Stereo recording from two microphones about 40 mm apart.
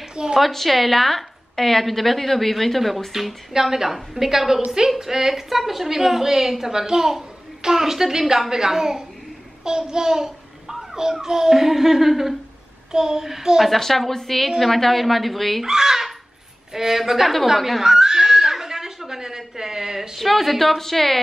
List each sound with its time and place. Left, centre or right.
0.1 s a woman's voice: centre
0.4 s a woman's voice: centre
13.7 s a woman's voice: centre
15.6 s a woman's voice: centre
17.6 s chuckle: centre
20.2 s a woman's voice: centre